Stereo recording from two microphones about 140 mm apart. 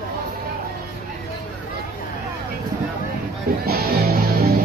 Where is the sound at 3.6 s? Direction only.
90° right.